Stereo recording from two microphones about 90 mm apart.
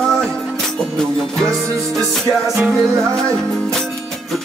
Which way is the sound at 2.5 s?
Centre (ahead or behind).